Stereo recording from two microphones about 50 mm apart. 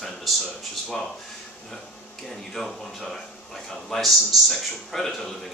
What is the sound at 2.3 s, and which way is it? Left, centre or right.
Speech, centre.